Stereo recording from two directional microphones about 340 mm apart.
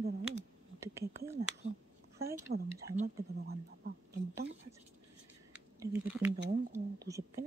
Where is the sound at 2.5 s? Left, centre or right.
Right.